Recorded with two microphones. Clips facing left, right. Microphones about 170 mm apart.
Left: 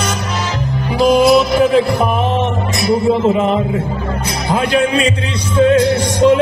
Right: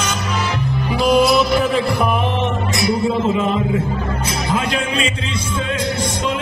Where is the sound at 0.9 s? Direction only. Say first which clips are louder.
Left 4 dB; 45° left (ahead or behind).